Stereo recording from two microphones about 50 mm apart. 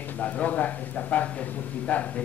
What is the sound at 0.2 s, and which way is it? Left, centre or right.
Speech, left.